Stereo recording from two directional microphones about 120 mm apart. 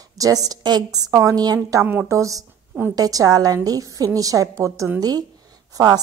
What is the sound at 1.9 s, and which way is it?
A woman's voice, 20° right (ahead or behind).